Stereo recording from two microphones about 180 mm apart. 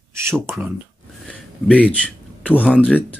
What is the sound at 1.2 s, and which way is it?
Speech, 5° left (ahead or behind).